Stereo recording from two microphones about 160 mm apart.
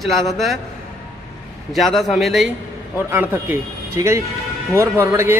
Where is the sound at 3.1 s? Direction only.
15° right (ahead or behind).